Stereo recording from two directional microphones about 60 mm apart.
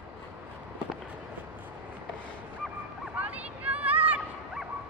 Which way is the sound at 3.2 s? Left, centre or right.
Right.